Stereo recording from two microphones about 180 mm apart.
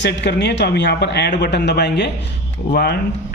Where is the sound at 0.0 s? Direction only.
70° left (ahead or behind).